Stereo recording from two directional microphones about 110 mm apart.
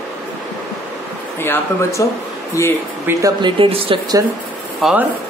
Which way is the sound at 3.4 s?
55° right (ahead or behind).